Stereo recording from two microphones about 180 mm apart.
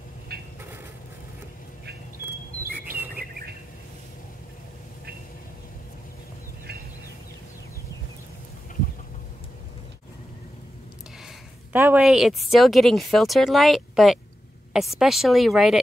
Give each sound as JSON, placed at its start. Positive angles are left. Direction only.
{"t": 0.3, "sound": "a sound", "side_deg": -60}
{"t": 3.2, "sound": "chirp", "side_deg": -55}
{"t": 11.7, "sound": "speech", "side_deg": -10}